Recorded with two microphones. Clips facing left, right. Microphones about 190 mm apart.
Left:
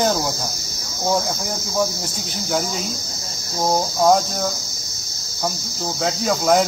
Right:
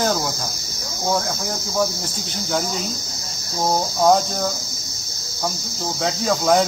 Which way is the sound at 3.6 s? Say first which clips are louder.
Even; 5° left (ahead or behind).